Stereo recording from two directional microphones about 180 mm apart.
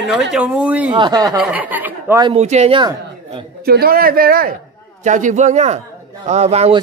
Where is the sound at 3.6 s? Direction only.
60° right (ahead or behind).